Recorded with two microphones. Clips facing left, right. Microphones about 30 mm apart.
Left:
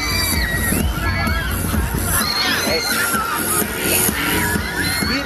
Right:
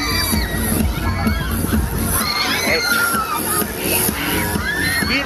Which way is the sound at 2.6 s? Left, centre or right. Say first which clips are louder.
Right 2 dB; centre.